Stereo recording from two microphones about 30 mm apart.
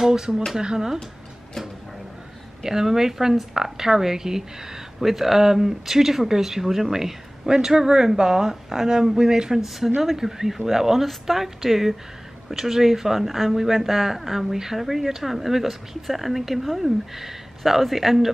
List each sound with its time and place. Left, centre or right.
0.1 s a woman's voice: right
2.6 s speech: centre
7.4 s a woman's voice: right; by 18.3 s centre